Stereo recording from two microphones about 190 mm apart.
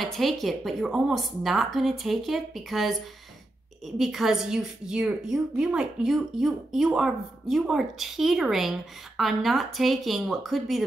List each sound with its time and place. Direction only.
0.0 s a woman's voice: centre (ahead or behind)